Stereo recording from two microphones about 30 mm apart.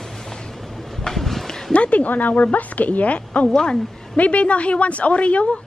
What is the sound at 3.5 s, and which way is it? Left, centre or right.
Speech, left.